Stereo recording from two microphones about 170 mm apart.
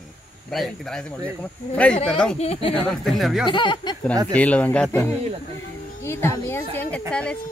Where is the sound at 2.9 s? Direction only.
Centre (ahead or behind).